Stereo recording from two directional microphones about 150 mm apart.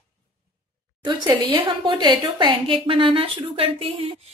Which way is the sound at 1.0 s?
30° right (ahead or behind).